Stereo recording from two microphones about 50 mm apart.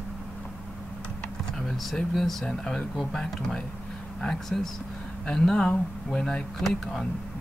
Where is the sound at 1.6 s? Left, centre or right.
Centre.